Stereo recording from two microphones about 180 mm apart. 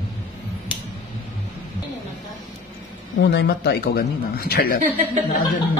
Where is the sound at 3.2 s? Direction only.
70° left (ahead or behind).